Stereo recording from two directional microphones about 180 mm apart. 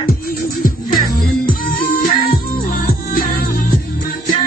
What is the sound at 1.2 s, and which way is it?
Music, 55° left (ahead or behind).